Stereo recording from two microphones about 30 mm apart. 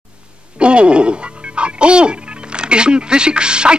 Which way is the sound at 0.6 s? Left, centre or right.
Right.